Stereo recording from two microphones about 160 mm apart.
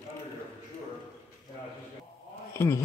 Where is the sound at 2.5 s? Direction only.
15° left (ahead or behind).